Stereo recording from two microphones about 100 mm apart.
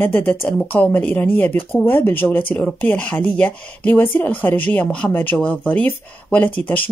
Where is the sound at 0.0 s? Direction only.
20° left (ahead or behind).